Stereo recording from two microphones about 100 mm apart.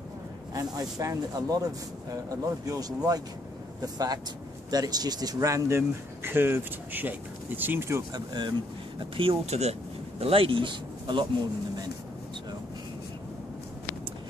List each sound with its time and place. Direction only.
0.6 s speech: 35° right (ahead or behind); by 8.0 s 20° right (ahead or behind)
8.1 s speech: 45° right (ahead or behind)
9.1 s speech: 60° right (ahead or behind); by 9.8 s 90° right
10.2 s speech: 65° right (ahead or behind)